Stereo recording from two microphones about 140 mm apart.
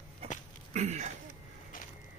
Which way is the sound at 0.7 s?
55° right (ahead or behind).